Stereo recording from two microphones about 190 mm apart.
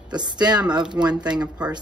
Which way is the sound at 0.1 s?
20° right (ahead or behind).